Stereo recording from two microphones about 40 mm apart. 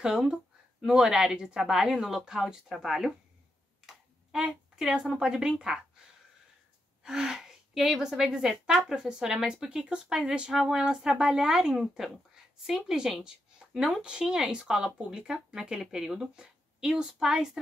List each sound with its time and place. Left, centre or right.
0.0 s a sound: centre
1.0 s a woman's voice: centre
3.8 s a sound: centre
5.2 s a woman's voice: centre
7.0 s a woman's voice: centre
14.0 s speech: centre
15.8 s a woman's voice: centre